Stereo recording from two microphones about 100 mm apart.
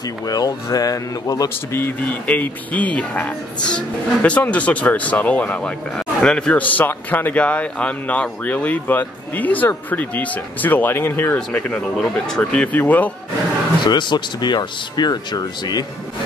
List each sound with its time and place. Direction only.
0.3 s speech: 40° left (ahead or behind)
1.7 s speech: 20° left (ahead or behind)
13.8 s speech: 50° left (ahead or behind)